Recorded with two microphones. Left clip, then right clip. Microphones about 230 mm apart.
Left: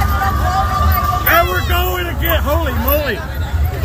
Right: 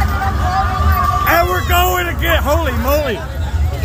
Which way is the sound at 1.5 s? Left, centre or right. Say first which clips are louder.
Right 3 dB; centre.